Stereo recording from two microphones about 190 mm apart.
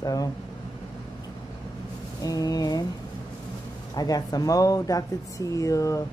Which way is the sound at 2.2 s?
20° left (ahead or behind).